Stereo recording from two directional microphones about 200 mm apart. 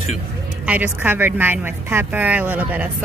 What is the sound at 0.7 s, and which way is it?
Speech, 10° right (ahead or behind).